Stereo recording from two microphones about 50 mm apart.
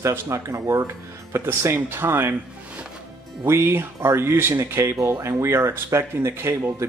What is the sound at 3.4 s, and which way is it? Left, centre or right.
Speech, right.